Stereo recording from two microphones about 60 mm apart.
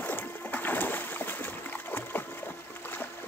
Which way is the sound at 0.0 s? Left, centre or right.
Left.